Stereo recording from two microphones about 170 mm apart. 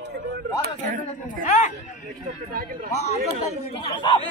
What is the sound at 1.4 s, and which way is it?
Speech, 45° left (ahead or behind).